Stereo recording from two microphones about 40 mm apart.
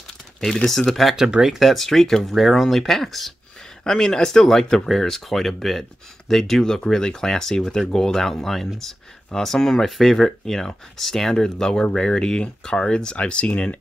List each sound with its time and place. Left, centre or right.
0.7 s speech: centre
1.1 s speech: centre
1.5 s speech: centre
1.9 s speech: centre
4.8 s speech: centre; by 13.7 s left